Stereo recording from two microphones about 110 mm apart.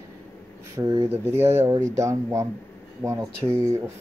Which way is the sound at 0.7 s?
30° right (ahead or behind).